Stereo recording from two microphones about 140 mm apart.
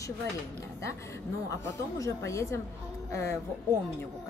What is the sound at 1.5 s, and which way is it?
A woman's voice, 20° left (ahead or behind).